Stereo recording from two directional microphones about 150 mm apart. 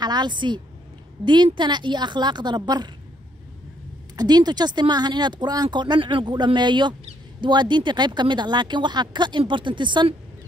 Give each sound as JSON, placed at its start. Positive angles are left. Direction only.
{"t": 0.0, "sound": "speech", "side_deg": -30}
{"t": 4.2, "sound": "speech", "side_deg": -25}